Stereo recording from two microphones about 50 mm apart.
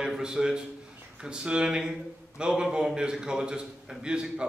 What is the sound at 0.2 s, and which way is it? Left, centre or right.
A man's voice, centre.